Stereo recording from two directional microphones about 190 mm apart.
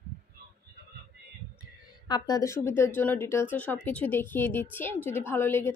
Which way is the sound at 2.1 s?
20° left (ahead or behind).